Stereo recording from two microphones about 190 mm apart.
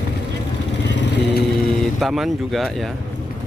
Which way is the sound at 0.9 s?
65° left (ahead or behind).